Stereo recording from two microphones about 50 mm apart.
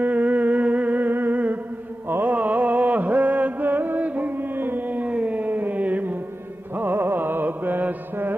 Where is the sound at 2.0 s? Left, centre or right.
Right.